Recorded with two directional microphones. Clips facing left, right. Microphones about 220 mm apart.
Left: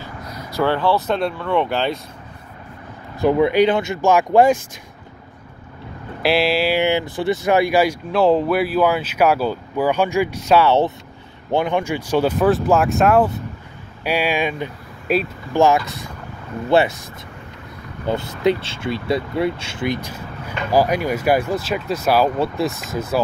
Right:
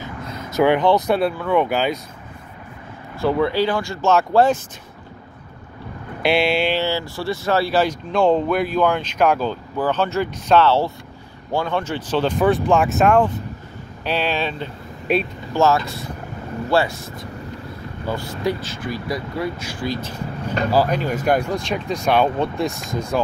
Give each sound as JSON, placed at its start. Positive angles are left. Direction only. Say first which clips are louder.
{"t": 0.0, "sound": "speech", "louder": "right 2 dB", "side_deg": -25}
{"t": 3.2, "sound": "speech", "louder": "left 4 dB", "side_deg": 15}
{"t": 6.2, "sound": "speech", "louder": "left 1 dB", "side_deg": 0}
{"t": 6.8, "sound": "speech", "louder": "left 4 dB", "side_deg": 20}
{"t": 15.5, "sound": "speech", "louder": "left 2 dB", "side_deg": 15}